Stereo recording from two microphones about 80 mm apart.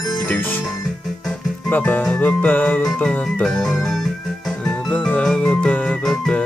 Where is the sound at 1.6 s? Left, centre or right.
Left.